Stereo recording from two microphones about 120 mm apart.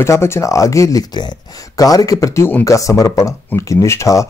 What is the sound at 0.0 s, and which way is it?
Speech, 20° left (ahead or behind).